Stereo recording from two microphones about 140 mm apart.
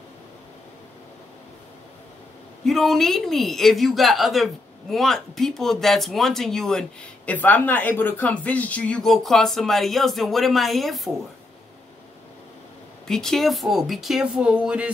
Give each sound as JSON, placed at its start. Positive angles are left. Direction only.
{"t": 2.6, "sound": "speech", "side_deg": 0}
{"t": 13.0, "sound": "speech", "side_deg": 5}